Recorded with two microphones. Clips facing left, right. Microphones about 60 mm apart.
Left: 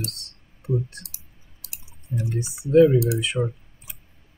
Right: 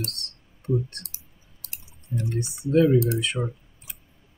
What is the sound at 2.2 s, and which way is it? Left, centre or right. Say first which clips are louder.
Speech: left 1 dB; centre.